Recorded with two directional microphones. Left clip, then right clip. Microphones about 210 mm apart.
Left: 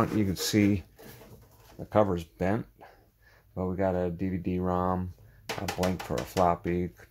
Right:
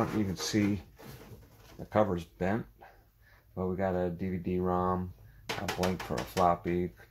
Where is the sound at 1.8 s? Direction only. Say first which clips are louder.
Left 3 dB; 35° left (ahead or behind).